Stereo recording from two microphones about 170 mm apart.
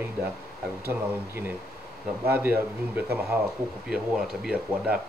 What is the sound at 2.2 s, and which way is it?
Speech, 10° right (ahead or behind).